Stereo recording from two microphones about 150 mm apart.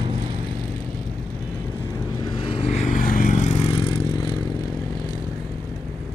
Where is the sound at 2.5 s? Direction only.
45° left (ahead or behind).